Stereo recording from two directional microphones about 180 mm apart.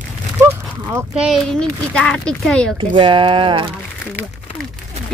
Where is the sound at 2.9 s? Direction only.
30° right (ahead or behind).